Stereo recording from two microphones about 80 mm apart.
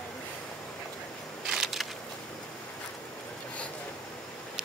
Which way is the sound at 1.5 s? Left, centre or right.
Centre.